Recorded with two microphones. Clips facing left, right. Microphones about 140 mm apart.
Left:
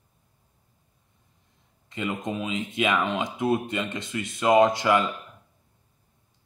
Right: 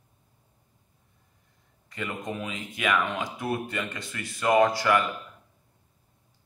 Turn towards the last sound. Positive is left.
turn(degrees=20)  # may be behind; listen again after turning